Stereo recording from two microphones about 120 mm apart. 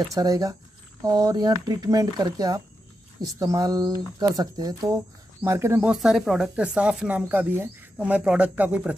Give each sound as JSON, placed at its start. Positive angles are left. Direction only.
{"t": 0.0, "sound": "speech", "side_deg": -30}
{"t": 5.9, "sound": "speech", "side_deg": -5}